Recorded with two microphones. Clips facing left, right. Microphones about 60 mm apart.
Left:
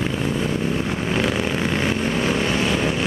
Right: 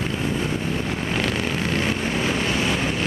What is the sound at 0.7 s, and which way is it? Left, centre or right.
Vehicle, centre.